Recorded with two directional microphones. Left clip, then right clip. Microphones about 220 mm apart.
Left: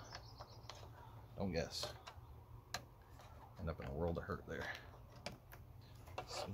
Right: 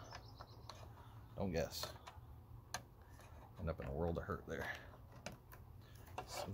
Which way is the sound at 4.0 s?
20° right (ahead or behind).